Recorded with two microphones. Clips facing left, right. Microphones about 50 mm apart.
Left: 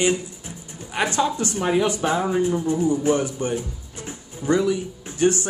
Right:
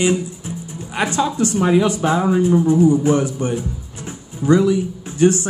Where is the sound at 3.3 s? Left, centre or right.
Right.